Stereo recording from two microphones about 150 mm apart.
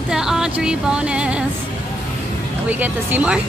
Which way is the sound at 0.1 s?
5° right (ahead or behind).